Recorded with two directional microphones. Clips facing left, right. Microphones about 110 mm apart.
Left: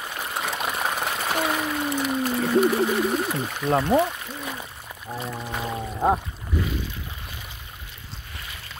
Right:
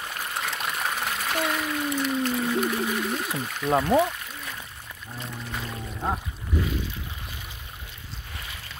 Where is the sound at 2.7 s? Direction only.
20° left (ahead or behind).